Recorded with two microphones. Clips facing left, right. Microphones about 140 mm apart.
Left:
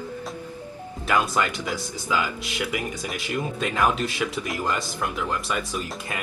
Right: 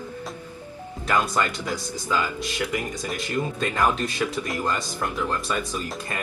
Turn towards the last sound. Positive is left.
turn(degrees=5)  # may be behind; listen again after turning